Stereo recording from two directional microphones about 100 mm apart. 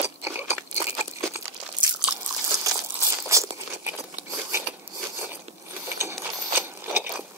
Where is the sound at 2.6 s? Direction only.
30° right (ahead or behind).